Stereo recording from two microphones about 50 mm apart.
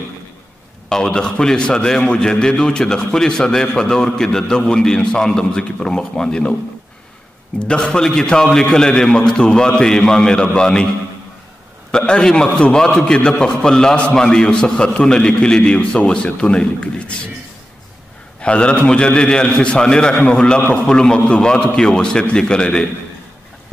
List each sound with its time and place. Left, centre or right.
0.8 s a man's voice: centre
7.5 s a man's voice: centre
12.1 s a man's voice: centre
18.4 s a man's voice: left